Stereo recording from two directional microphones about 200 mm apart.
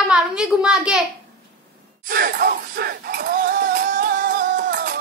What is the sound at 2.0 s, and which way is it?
Music, 45° right (ahead or behind).